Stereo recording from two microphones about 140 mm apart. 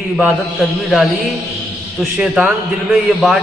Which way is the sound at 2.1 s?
5° right (ahead or behind).